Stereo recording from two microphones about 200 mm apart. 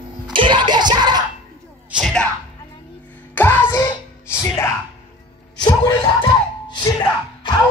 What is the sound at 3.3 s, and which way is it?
Music, 10° left (ahead or behind).